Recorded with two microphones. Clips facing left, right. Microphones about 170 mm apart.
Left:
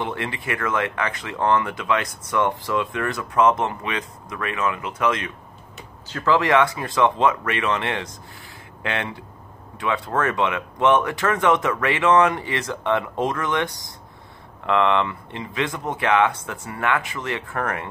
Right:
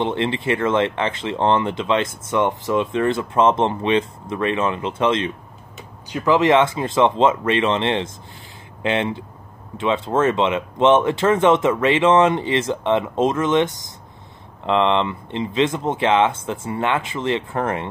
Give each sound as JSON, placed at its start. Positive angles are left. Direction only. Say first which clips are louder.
{"t": 0.0, "sound": "speech", "louder": "right 7 dB", "side_deg": -25}